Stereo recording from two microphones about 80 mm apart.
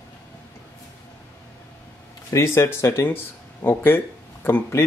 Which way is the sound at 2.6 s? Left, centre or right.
Left.